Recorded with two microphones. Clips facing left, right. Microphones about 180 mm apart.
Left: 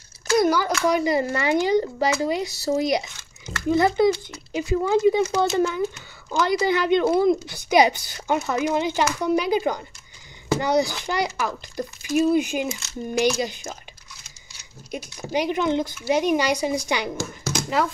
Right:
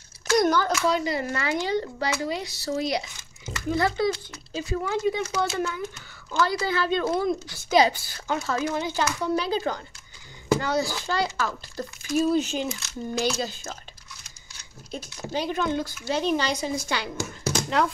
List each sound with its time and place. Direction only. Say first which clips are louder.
0.3 s a child's voice: left 2 dB; 5° left (ahead or behind)
17.8 s speech: left 1 dB; 5° left (ahead or behind)